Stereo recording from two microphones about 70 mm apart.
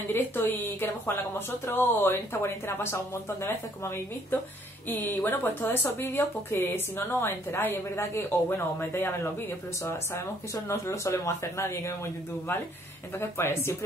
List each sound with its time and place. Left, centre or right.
0.1 s speech: left
10.1 s speech: left
13.2 s speech: left